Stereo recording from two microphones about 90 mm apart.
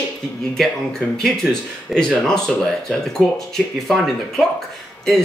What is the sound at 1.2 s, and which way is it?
Speech, 5° left (ahead or behind).